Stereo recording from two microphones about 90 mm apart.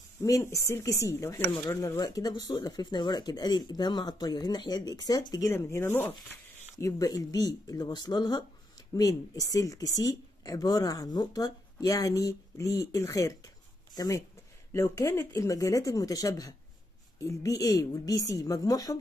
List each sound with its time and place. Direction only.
0.2 s a woman's voice: 35° left (ahead or behind)
5.5 s speech: 30° left (ahead or behind)
6.8 s speech: 40° left (ahead or behind)
8.9 s a woman's voice: 40° left (ahead or behind)